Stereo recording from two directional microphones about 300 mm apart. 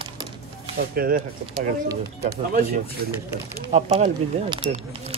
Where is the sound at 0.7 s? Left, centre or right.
Right.